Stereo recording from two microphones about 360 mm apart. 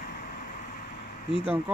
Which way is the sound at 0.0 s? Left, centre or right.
Left.